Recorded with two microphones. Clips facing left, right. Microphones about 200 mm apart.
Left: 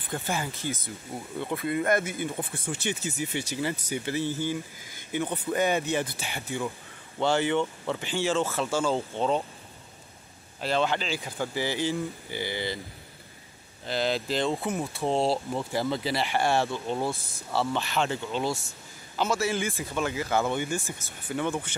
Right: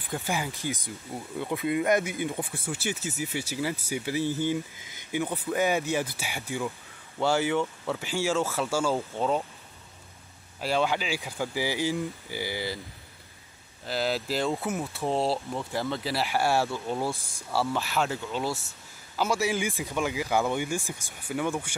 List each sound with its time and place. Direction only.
0.1 s speech: 15° right (ahead or behind)
10.6 s speech: 10° right (ahead or behind)
13.8 s speech: 5° right (ahead or behind)